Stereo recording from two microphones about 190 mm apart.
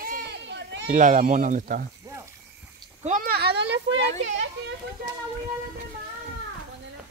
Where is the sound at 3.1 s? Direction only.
50° right (ahead or behind); by 4.0 s 65° right (ahead or behind).